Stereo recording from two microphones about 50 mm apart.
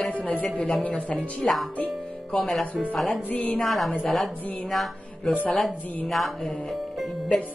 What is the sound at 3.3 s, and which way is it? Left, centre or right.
Speech, left.